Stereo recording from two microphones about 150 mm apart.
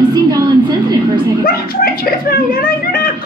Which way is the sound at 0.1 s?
30° right (ahead or behind).